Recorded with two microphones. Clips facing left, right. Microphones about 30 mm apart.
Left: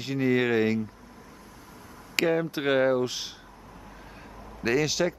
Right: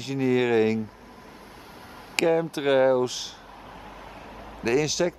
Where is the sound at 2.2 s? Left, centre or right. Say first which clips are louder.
Right 2 dB; centre.